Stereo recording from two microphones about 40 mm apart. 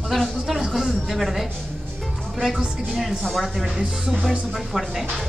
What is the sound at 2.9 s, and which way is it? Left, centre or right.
A woman's voice, centre.